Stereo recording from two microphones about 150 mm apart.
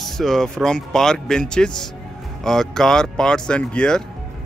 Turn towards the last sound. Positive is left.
turn(degrees=5)  # may be behind; listen again after turning